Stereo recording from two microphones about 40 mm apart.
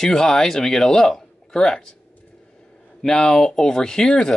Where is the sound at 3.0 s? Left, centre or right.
Centre.